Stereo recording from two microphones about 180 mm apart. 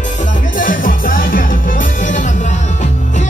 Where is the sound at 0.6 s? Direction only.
50° left (ahead or behind).